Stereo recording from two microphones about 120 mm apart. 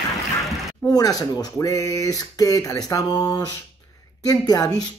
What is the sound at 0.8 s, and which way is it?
Speech, 30° left (ahead or behind).